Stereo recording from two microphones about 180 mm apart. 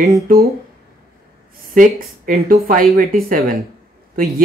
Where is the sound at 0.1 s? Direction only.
55° right (ahead or behind).